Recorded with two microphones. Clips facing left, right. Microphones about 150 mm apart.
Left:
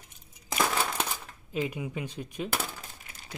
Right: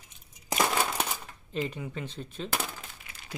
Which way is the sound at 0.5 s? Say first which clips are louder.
Right 1 dB; 10° right (ahead or behind).